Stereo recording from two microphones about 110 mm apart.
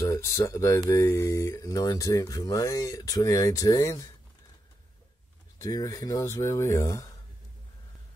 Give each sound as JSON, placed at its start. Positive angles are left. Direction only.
{"t": 0.0, "sound": "speech", "side_deg": 30}
{"t": 5.6, "sound": "speech", "side_deg": 35}